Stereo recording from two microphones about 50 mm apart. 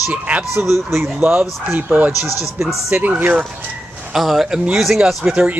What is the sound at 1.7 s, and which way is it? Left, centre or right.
Speech, right.